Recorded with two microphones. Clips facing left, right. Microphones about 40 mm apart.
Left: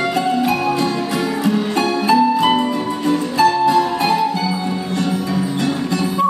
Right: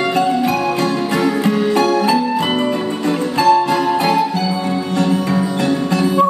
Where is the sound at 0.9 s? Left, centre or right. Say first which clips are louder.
Right 3 dB; right.